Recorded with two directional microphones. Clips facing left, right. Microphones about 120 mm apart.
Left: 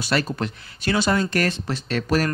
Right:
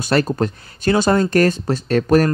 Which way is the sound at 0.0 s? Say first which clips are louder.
Right 6 dB; 45° right (ahead or behind).